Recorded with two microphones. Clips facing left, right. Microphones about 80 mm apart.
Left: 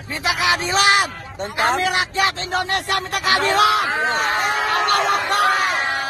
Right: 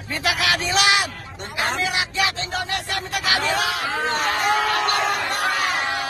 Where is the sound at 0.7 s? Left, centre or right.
Left.